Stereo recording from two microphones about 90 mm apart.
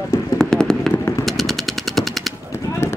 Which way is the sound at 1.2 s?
Centre (ahead or behind).